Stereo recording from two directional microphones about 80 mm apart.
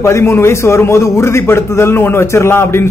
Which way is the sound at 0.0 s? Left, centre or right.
Left.